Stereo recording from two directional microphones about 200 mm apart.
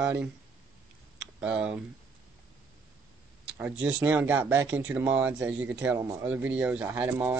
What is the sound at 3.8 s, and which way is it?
A man's voice, 5° right (ahead or behind).